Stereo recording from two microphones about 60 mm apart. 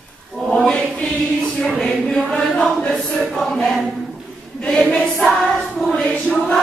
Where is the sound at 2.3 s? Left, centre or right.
Centre.